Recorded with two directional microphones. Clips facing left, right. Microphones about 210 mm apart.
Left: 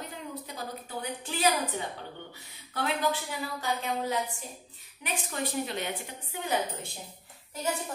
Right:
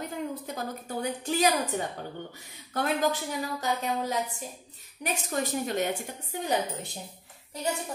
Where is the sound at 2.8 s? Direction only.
45° right (ahead or behind).